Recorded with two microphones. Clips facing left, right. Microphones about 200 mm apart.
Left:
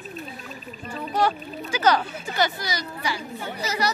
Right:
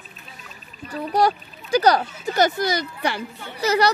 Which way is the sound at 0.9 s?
40° right (ahead or behind).